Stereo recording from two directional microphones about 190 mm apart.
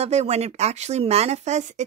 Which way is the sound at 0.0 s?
35° right (ahead or behind).